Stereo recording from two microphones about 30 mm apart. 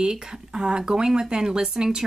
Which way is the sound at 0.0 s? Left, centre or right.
Right.